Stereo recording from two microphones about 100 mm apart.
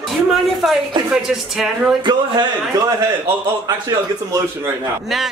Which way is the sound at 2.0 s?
45° right (ahead or behind).